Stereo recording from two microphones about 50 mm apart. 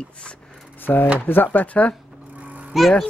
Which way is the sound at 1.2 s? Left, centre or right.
Left.